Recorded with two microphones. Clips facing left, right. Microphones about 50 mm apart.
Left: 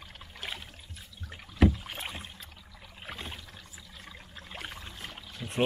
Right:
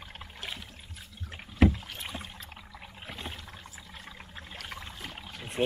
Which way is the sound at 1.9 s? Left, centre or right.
Centre.